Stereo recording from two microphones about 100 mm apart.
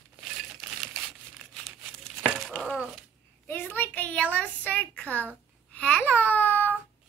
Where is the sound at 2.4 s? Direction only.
5° left (ahead or behind).